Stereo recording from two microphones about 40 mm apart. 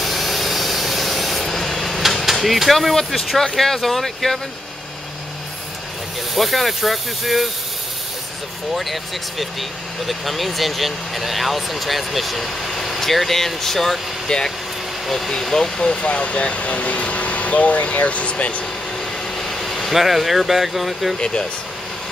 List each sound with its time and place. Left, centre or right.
0.0 s vehicle: centre
3.3 s speech: centre
6.3 s speech: centre
8.7 s speech: centre; by 18.3 s left
19.3 s speech: centre